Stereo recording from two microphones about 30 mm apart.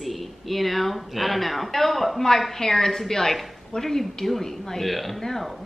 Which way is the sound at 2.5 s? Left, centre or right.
Centre.